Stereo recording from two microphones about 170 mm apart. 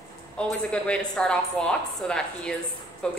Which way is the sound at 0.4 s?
5° left (ahead or behind).